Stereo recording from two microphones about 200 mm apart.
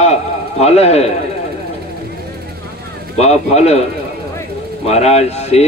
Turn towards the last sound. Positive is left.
turn(degrees=30)  # may be behind; listen again after turning